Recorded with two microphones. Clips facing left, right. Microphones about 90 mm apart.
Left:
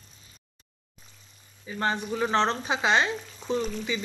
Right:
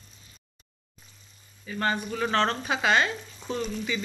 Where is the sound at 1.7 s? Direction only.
20° left (ahead or behind).